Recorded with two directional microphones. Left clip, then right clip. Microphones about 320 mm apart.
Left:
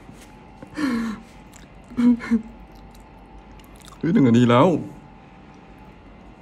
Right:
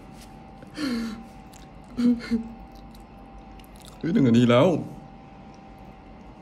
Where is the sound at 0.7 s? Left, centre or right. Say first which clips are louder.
Left 5 dB; centre.